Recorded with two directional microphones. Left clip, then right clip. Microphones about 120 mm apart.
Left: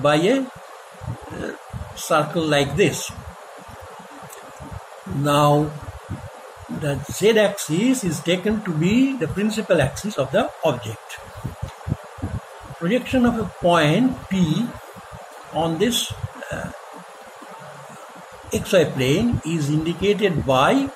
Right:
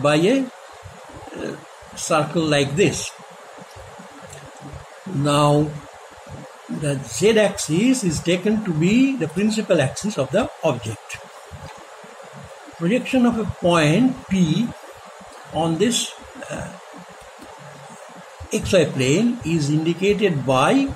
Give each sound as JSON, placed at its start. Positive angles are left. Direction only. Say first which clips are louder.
{"t": 0.0, "sound": "speech", "louder": "even", "side_deg": -20}
{"t": 2.0, "sound": "speech", "louder": "even", "side_deg": -20}
{"t": 5.2, "sound": "speech", "louder": "left 1 dB", "side_deg": -15}
{"t": 6.8, "sound": "speech", "louder": "right 1 dB", "side_deg": -20}
{"t": 12.8, "sound": "speech", "louder": "right 1 dB", "side_deg": -15}
{"t": 18.5, "sound": "speech", "louder": "even", "side_deg": -20}